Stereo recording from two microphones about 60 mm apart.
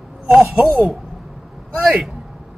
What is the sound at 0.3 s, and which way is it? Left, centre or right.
Speech, centre.